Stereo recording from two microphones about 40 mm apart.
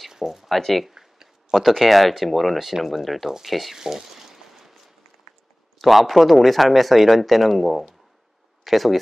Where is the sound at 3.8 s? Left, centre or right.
Centre.